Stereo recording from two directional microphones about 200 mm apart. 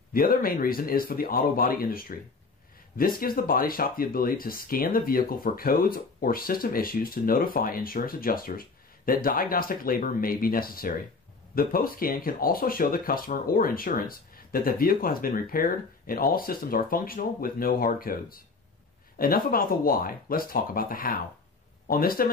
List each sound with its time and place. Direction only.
0.1 s speech: 45° left (ahead or behind)
3.2 s speech: 45° left (ahead or behind)